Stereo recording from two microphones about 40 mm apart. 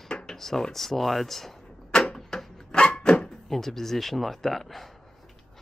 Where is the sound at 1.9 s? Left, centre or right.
Centre.